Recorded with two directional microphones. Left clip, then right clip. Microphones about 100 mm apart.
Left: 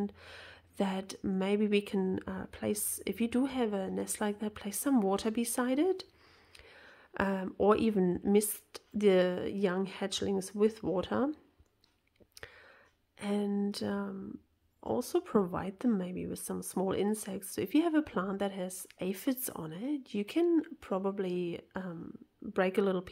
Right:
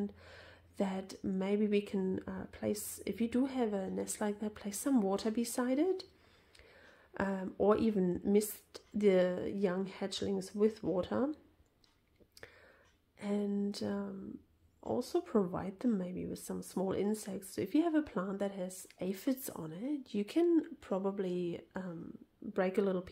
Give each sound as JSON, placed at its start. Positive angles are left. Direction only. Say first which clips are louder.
{"t": 0.0, "sound": "a woman's voice", "louder": "left 3 dB", "side_deg": 35}
{"t": 12.4, "sound": "whispering", "louder": "left 5 dB", "side_deg": 35}
{"t": 13.2, "sound": "a woman's voice", "louder": "left 3 dB", "side_deg": 30}